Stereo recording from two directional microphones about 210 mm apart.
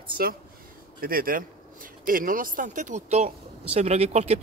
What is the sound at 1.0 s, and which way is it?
Speech, 45° right (ahead or behind).